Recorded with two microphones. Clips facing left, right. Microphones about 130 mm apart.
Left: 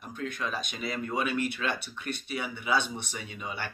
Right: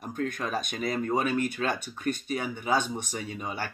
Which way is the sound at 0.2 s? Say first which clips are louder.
Right 3 dB; 45° right (ahead or behind).